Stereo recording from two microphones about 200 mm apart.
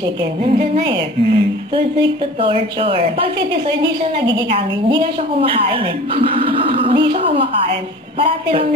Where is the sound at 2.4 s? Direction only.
25° right (ahead or behind).